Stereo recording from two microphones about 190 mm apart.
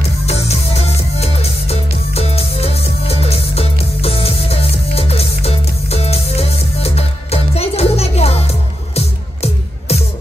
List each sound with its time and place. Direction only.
0.3 s music: 35° left (ahead or behind)